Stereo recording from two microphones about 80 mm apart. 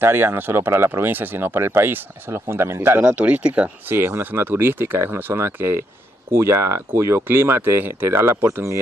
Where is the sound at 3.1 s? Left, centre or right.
Centre.